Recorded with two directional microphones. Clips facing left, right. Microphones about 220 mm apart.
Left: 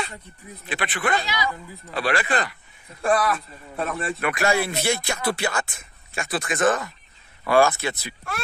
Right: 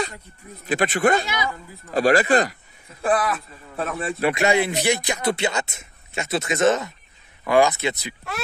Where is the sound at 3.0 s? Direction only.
Centre (ahead or behind).